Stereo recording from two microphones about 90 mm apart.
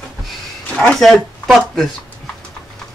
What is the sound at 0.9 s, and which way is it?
Speech, 5° left (ahead or behind).